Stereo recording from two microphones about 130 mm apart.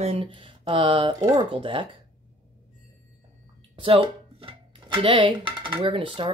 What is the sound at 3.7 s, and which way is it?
Speech, 45° right (ahead or behind).